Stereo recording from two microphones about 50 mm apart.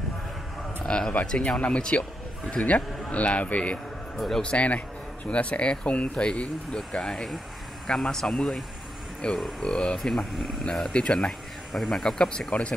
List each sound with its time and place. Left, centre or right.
0.8 s speech: centre
9.4 s speech: centre
11.7 s speech: centre
12.0 s speech: centre